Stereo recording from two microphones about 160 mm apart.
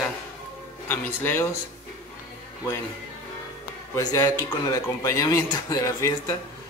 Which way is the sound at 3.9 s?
25° left (ahead or behind).